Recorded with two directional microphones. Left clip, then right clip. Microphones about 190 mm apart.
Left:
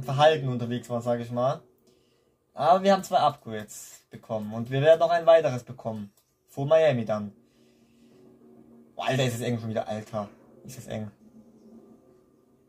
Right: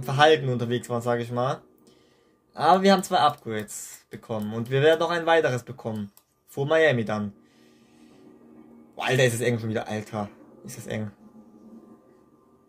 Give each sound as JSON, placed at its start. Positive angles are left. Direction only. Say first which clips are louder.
{"t": 0.0, "sound": "speech", "louder": "right 2 dB", "side_deg": -45}
{"t": 2.5, "sound": "speech", "louder": "right 2 dB", "side_deg": -45}
{"t": 9.0, "sound": "speech", "louder": "right 5 dB", "side_deg": -45}